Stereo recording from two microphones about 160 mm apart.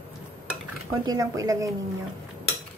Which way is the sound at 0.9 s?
25° right (ahead or behind).